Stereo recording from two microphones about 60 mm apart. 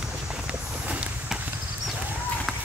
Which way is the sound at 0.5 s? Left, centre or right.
Right.